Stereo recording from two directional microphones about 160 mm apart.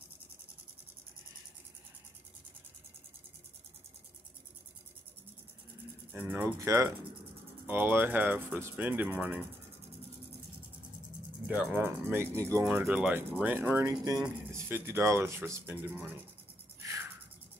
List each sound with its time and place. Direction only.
6.1 s speech: 10° right (ahead or behind)
11.4 s speech: 10° right (ahead or behind)
16.8 s a sound: 20° right (ahead or behind)